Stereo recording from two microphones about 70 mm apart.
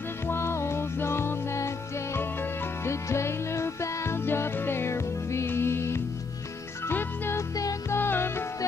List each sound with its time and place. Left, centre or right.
0.3 s music: left
2.8 s music: left